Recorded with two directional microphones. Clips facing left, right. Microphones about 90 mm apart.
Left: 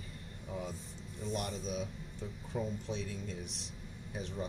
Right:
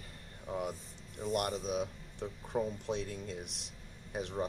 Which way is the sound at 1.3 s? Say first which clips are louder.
Right 5 dB; 65° right (ahead or behind).